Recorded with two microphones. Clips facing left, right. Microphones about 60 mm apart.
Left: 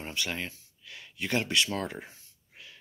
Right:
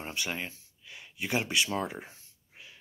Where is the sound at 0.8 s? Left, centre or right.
Centre.